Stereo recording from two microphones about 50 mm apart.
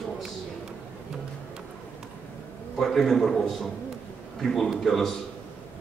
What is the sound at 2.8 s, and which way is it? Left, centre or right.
A man's voice, centre.